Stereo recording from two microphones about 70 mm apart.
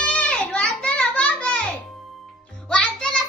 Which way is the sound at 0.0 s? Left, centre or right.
Centre.